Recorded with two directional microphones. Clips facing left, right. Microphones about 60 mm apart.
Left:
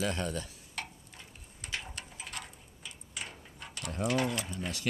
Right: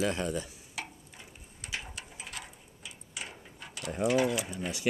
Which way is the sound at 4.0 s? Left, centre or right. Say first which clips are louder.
Right 4 dB; centre.